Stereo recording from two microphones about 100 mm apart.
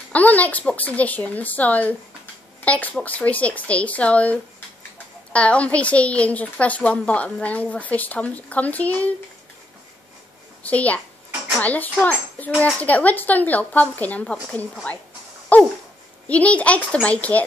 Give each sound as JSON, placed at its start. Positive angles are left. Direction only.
{"t": 0.1, "sound": "a woman's voice", "side_deg": 15}
{"t": 10.6, "sound": "a woman's voice", "side_deg": 15}